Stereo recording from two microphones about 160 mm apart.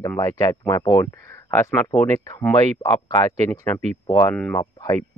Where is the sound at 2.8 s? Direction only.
20° left (ahead or behind).